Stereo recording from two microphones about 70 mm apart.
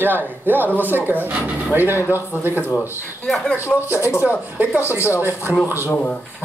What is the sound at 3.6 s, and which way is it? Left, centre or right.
Speech, left.